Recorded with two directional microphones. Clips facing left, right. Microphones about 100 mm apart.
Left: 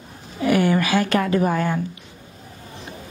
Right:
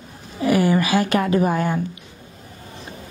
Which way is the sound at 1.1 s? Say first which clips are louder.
Right 1 dB; 15° right (ahead or behind).